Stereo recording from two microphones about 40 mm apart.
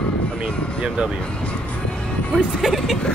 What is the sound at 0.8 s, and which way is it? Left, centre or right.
Speech, right.